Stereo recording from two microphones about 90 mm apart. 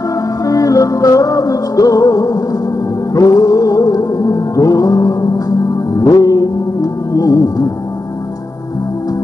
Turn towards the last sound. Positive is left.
turn(degrees=40)  # may be behind; listen again after turning